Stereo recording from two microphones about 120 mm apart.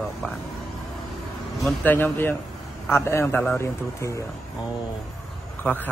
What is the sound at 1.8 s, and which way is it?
A man's voice, 15° left (ahead or behind).